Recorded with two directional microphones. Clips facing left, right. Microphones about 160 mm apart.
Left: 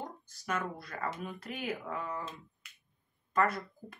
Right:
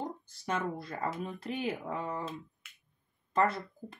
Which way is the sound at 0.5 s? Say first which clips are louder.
Right 2 dB; 25° right (ahead or behind).